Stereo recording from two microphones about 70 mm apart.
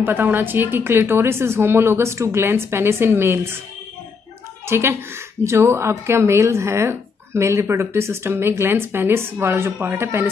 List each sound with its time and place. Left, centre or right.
0.0 s a woman's voice: right
4.6 s a woman's voice: right